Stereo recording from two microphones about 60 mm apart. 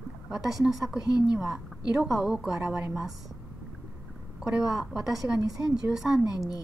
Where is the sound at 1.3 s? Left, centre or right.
Centre.